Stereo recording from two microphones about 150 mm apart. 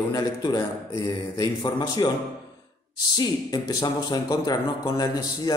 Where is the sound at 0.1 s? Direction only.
25° left (ahead or behind).